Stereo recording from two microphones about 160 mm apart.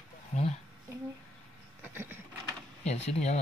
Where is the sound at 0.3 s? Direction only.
40° left (ahead or behind).